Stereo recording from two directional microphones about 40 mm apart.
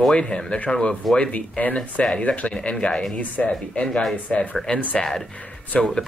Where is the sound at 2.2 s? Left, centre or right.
Left.